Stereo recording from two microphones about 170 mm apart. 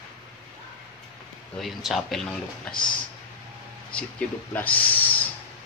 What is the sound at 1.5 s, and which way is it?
Speech, centre (ahead or behind).